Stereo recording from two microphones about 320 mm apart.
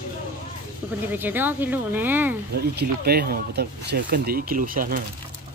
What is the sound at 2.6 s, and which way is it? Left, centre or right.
Speech, right.